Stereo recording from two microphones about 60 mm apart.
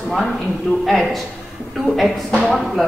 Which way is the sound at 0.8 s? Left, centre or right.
Centre.